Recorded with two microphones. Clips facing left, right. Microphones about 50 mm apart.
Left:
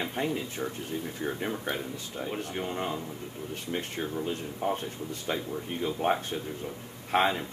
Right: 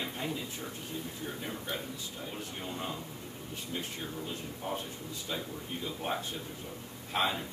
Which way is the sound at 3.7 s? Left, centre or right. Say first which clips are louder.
Left 6 dB; left.